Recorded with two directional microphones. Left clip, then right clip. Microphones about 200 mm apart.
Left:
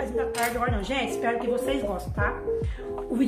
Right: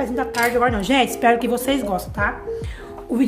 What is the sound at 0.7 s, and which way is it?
A woman's voice, 55° right (ahead or behind).